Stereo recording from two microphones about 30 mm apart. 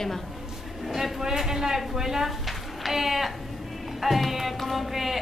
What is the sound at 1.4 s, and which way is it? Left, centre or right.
A woman's voice, centre.